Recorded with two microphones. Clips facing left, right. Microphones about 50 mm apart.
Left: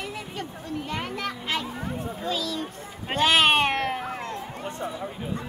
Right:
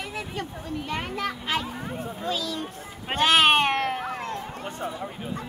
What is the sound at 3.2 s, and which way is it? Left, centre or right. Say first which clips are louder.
Cat: right 1 dB; centre.